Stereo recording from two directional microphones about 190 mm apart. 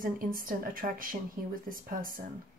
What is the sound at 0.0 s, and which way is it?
Speech, 50° right (ahead or behind).